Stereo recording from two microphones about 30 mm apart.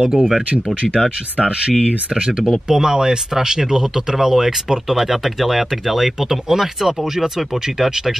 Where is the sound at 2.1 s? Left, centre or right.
Right.